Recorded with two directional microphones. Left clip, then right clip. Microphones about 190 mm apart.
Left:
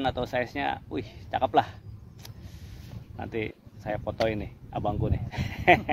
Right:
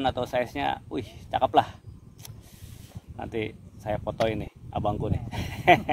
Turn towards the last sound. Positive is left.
turn(degrees=-20)  # may be behind; listen again after turning